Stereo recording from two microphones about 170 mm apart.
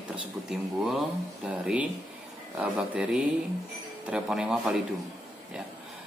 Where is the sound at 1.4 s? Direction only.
5° right (ahead or behind).